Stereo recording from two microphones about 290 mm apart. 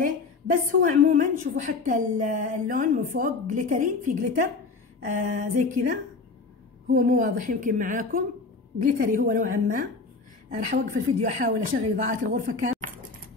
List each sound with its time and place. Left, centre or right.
0.0 s a woman's voice: right